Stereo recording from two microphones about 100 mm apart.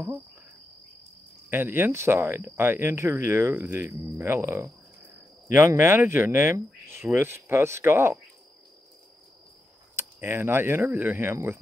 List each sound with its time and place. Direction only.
1.5 s speech: 20° right (ahead or behind)
9.9 s speech: 25° right (ahead or behind)